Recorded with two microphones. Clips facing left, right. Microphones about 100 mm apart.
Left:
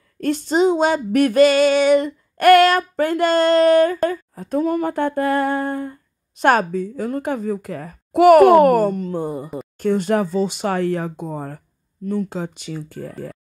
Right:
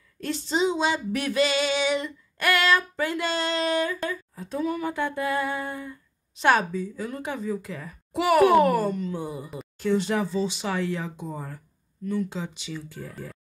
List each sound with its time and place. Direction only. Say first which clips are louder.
0.2 s female singing: left 8 dB; 50° left (ahead or behind)